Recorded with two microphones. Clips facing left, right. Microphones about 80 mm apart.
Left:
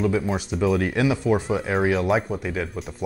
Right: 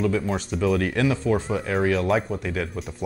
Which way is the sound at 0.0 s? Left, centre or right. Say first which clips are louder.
Left 1 dB; centre.